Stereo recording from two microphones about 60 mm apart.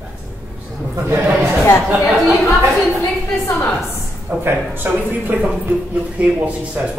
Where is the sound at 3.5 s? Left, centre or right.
Left.